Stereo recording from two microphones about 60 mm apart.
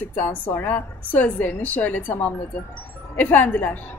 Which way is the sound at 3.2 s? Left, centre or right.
Left.